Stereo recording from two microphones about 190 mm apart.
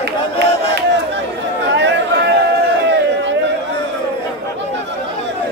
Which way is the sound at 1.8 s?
65° right (ahead or behind).